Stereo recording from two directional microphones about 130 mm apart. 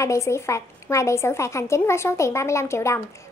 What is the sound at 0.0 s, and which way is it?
A woman's voice, 25° left (ahead or behind).